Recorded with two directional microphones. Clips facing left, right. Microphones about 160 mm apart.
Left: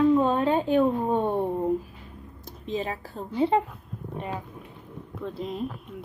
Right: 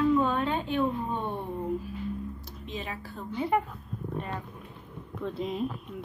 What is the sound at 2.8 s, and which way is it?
Speech, 30° left (ahead or behind).